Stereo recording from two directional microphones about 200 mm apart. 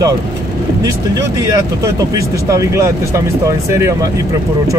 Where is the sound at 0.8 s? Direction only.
15° right (ahead or behind).